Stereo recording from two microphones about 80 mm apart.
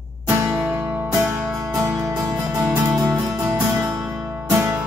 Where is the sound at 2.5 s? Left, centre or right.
Right.